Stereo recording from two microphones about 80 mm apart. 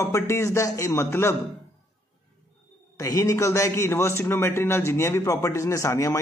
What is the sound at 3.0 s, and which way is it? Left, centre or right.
A man's voice, left.